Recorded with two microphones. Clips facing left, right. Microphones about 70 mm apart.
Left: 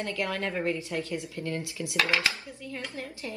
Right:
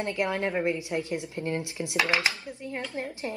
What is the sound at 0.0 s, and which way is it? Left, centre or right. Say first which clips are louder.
A woman's voice: right 3 dB; right.